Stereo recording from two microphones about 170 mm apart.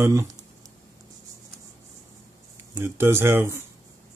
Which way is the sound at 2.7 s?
15° right (ahead or behind).